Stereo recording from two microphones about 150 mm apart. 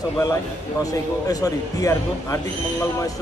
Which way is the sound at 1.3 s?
25° left (ahead or behind).